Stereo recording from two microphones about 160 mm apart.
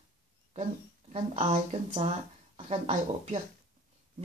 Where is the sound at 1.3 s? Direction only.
45° right (ahead or behind).